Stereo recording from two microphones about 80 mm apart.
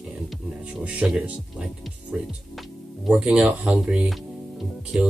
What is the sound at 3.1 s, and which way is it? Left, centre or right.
Speech, centre.